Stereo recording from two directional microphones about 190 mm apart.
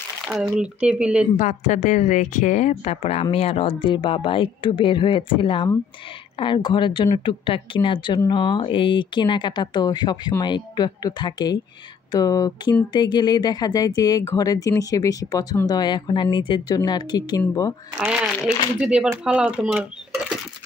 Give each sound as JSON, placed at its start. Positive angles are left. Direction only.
{"t": 0.3, "sound": "speech", "side_deg": -5}
{"t": 1.3, "sound": "speech", "side_deg": 40}
{"t": 17.9, "sound": "speech", "side_deg": -5}